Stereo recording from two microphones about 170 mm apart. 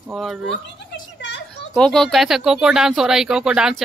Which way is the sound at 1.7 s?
5° left (ahead or behind).